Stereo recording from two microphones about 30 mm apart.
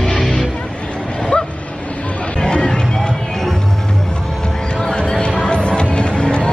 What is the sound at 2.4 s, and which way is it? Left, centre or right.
Music, left.